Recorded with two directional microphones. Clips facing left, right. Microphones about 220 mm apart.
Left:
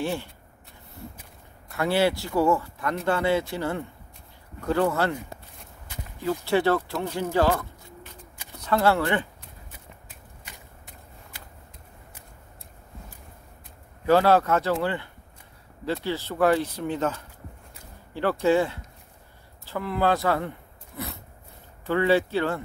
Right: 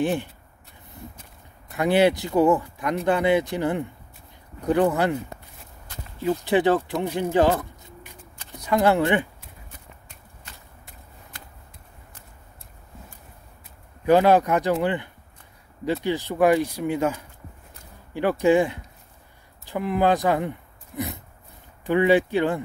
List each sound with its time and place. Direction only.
0.0 s speech: 15° right (ahead or behind)
1.7 s speech: 20° right (ahead or behind)
6.2 s speech: 15° right (ahead or behind)
8.5 s speech: 15° right (ahead or behind)
10.0 s a sound: 5° left (ahead or behind)
14.0 s speech: 15° right (ahead or behind)
18.4 s speech: 15° right (ahead or behind)